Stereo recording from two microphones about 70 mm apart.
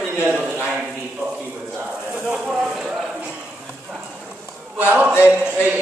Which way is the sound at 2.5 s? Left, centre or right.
Centre.